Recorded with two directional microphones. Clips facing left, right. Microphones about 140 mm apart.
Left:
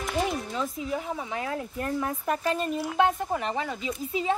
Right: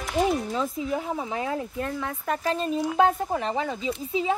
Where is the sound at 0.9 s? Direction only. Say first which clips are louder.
Right 2 dB; 25° right (ahead or behind).